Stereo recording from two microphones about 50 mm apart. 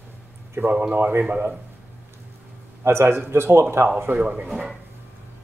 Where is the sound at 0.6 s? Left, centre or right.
Right.